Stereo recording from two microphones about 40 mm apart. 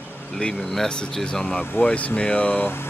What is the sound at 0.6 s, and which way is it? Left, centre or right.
Speech, centre.